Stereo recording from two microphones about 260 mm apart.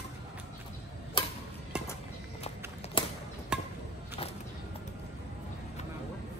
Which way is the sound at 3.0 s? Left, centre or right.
Centre.